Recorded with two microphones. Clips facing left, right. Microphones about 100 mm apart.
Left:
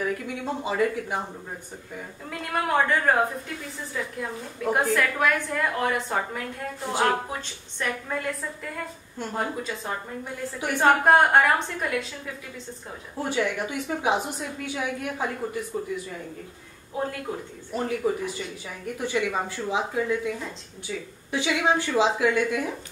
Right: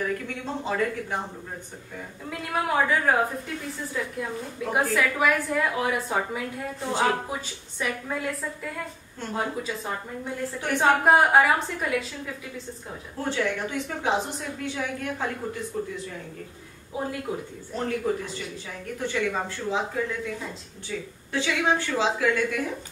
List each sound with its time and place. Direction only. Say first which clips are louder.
0.7 s a woman's voice: left 2 dB; 10° left (ahead or behind)
2.2 s a woman's voice: even; centre (ahead or behind)
13.2 s a woman's voice: left 1 dB; 10° left (ahead or behind)
16.9 s a woman's voice: even; 5° right (ahead or behind)
17.7 s a woman's voice: left 1 dB; 10° left (ahead or behind)